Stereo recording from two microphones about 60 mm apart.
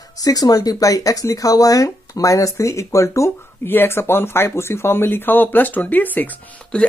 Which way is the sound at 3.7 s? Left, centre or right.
Left.